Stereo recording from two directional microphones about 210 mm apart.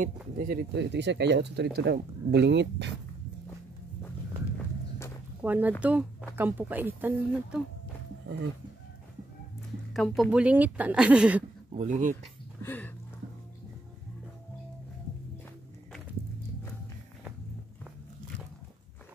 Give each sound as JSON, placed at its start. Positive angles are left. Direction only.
{"t": 0.0, "sound": "speech", "side_deg": -40}
{"t": 5.4, "sound": "speech", "side_deg": -10}
{"t": 9.9, "sound": "a woman's voice", "side_deg": 0}
{"t": 11.7, "sound": "speech", "side_deg": -35}
{"t": 12.6, "sound": "a sound", "side_deg": 10}